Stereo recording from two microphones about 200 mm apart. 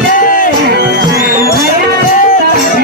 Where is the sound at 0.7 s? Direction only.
55° right (ahead or behind).